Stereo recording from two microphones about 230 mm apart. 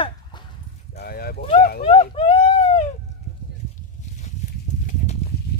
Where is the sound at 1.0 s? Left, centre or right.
Left.